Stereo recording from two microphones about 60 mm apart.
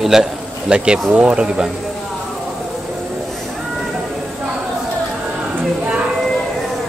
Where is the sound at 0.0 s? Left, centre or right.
Centre.